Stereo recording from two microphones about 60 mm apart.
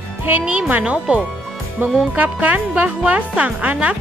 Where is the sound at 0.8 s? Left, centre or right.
Centre.